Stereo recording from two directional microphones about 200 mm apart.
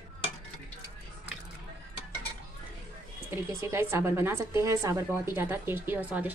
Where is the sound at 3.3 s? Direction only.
15° right (ahead or behind).